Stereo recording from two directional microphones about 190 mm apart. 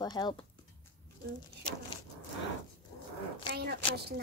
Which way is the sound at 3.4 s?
55° right (ahead or behind).